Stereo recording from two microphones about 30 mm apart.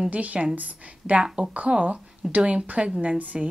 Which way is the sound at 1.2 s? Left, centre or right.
Right.